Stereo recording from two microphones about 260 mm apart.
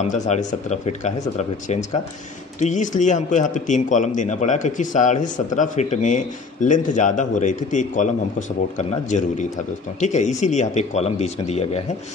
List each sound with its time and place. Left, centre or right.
0.0 s speech: left